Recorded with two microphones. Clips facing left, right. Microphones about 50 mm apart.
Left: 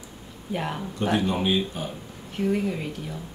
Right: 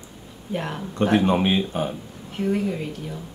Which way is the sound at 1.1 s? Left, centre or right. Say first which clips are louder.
Right 4 dB; right.